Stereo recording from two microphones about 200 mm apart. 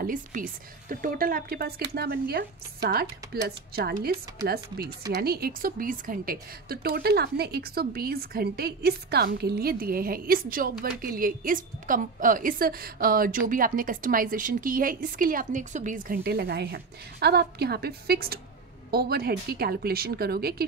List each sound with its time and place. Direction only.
0.0 s a woman's voice: 45° right (ahead or behind)